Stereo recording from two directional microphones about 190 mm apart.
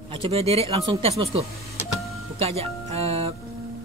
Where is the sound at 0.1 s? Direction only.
30° right (ahead or behind).